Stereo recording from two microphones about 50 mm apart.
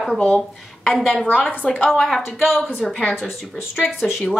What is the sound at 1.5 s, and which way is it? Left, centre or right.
Speech, left.